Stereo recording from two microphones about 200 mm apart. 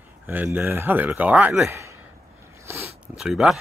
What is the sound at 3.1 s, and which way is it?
Speech, centre (ahead or behind).